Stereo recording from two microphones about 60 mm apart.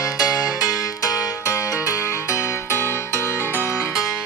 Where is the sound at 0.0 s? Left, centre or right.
Left.